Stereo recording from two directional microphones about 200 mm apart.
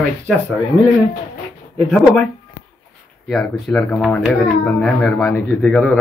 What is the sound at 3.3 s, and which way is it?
A man's voice, centre (ahead or behind).